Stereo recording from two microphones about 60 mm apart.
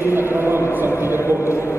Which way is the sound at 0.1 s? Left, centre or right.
Right.